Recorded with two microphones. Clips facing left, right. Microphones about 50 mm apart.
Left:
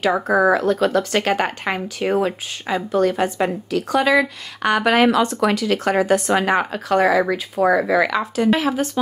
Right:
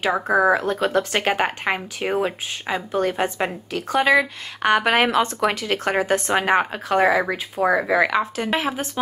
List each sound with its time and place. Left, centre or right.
0.5 s a woman's voice: right
7.6 s speech: centre
8.5 s speech: centre